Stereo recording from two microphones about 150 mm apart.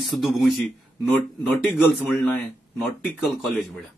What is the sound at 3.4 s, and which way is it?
Speech, centre (ahead or behind).